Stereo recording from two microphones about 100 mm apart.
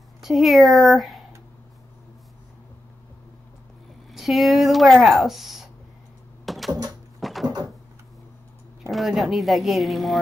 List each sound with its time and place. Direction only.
0.2 s speech: centre (ahead or behind)
4.1 s speech: centre (ahead or behind)
6.4 s a sound: centre (ahead or behind)
8.9 s speech: centre (ahead or behind)